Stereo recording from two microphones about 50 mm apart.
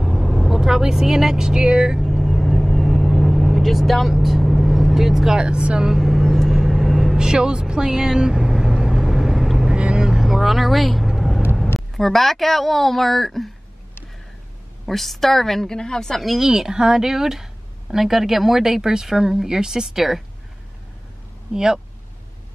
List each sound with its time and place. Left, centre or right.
0.0 s speech: centre
2.0 s vehicle: centre
5.4 s speech: right
5.9 s vehicle: centre
7.2 s vehicle: centre
9.8 s vehicle: centre
12.0 s a woman's voice: centre
14.9 s a woman's voice: centre
16.2 s speech: centre